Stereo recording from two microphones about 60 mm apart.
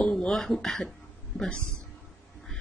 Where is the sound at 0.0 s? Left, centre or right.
Centre.